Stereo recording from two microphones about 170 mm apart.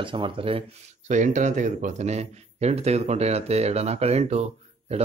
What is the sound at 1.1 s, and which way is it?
A man's voice, 45° right (ahead or behind).